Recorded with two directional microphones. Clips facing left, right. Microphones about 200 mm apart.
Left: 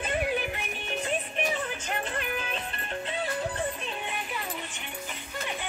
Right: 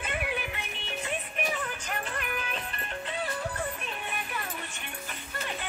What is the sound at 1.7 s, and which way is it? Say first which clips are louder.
Music: left 3 dB; 25° left (ahead or behind).